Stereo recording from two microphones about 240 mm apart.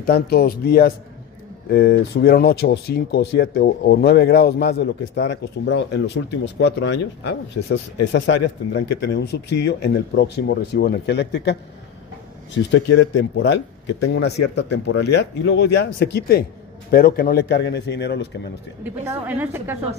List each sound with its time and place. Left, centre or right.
0.0 s speech: left
12.7 s speech: left
19.0 s a woman's voice: centre